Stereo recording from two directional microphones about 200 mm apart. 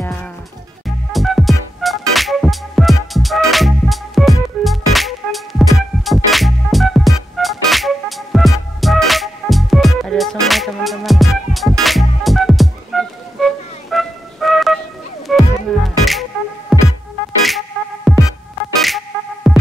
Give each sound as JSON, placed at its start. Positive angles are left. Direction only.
{"t": 0.0, "sound": "livestock", "side_deg": 10}
{"t": 0.8, "sound": "music", "side_deg": 0}